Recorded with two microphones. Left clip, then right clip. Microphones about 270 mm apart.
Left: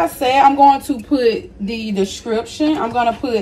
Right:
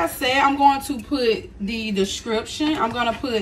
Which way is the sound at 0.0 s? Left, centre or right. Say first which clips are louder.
Left 7 dB; centre.